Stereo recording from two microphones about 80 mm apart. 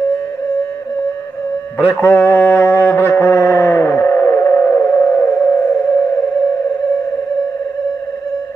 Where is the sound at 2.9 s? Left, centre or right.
Left.